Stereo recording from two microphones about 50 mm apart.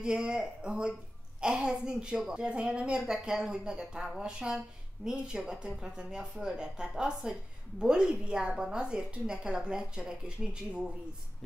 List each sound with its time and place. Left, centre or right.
0.0 s a woman's voice: centre